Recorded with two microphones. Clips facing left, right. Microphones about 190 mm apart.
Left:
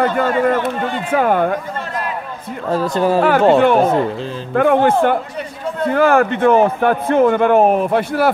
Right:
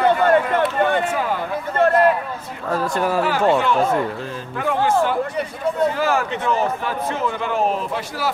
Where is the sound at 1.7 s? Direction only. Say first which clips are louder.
Right 9 dB; 60° right (ahead or behind).